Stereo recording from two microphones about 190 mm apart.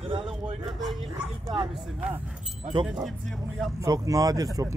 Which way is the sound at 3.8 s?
15° right (ahead or behind).